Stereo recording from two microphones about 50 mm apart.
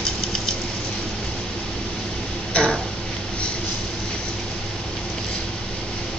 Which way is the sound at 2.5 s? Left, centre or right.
Left.